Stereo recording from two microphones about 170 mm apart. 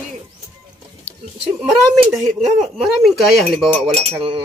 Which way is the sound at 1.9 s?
Centre (ahead or behind).